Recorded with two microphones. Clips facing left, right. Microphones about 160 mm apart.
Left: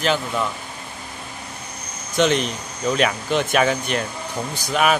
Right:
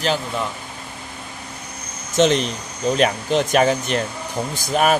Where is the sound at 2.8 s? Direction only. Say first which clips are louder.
Right 2 dB; 40° right (ahead or behind).